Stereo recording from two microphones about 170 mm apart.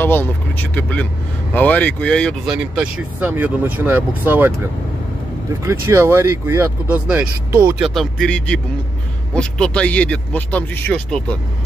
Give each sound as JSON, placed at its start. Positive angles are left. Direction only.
{"t": 0.0, "sound": "speech", "side_deg": 10}
{"t": 5.6, "sound": "speech", "side_deg": -15}
{"t": 7.8, "sound": "speech", "side_deg": 0}